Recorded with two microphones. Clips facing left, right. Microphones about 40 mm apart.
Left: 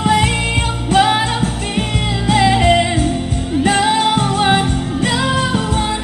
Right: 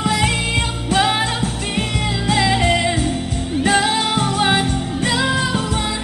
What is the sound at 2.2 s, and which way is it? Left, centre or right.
Music, centre.